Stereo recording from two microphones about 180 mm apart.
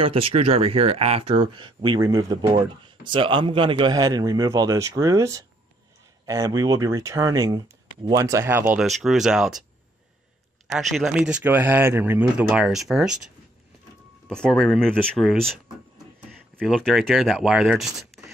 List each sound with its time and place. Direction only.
0.0 s speech: 30° right (ahead or behind); by 8.8 s 10° right (ahead or behind)
8.8 s speech: centre (ahead or behind)
10.7 s speech: centre (ahead or behind)
14.2 s speech: 5° left (ahead or behind)
16.6 s speech: centre (ahead or behind)